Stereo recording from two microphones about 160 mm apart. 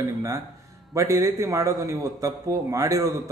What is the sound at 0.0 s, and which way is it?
A man's voice, 20° right (ahead or behind).